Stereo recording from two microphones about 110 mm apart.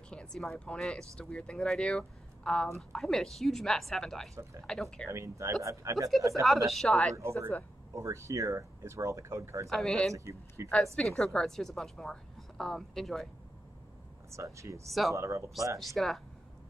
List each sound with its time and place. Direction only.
0.1 s a woman's voice: 5° left (ahead or behind)
5.1 s speech: 30° right (ahead or behind)
6.7 s a woman's voice: 5° left (ahead or behind)
7.2 s speech: 25° right (ahead or behind)
9.7 s a woman's voice: centre (ahead or behind)
10.1 s speech: 25° right (ahead or behind)
10.7 s a woman's voice: 5° left (ahead or behind)
14.3 s speech: 25° right (ahead or behind)
14.9 s a woman's voice: centre (ahead or behind)
15.1 s speech: 25° right (ahead or behind)
15.8 s a woman's voice: centre (ahead or behind)